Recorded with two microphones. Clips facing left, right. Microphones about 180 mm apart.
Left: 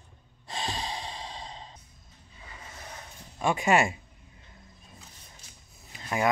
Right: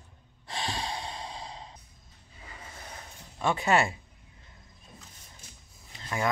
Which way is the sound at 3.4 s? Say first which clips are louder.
Left 1 dB; 15° left (ahead or behind).